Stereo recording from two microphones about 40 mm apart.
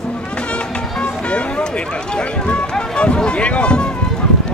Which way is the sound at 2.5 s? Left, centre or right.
Left.